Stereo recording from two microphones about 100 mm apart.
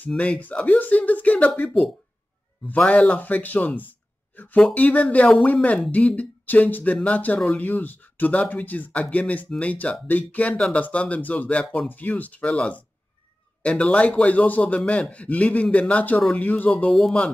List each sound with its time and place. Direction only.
0.0 s speech: 10° left (ahead or behind)
2.7 s speech: 15° left (ahead or behind)